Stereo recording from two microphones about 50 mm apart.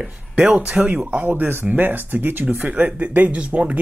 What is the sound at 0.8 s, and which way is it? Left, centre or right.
Speech, right.